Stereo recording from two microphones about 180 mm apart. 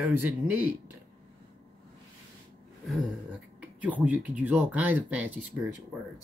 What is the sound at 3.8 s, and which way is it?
Speech, 10° right (ahead or behind).